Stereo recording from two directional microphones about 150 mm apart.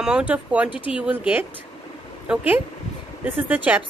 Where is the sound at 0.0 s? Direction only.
5° right (ahead or behind).